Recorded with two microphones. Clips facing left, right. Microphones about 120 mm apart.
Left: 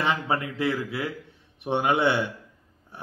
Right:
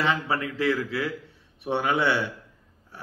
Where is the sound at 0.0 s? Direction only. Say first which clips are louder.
Even; 20° left (ahead or behind).